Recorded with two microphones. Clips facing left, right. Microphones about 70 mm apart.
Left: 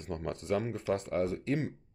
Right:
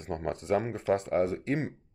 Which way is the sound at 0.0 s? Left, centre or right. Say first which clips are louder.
Right 4 dB; right.